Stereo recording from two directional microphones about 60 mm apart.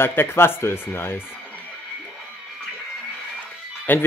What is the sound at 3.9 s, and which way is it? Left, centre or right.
Speech, left.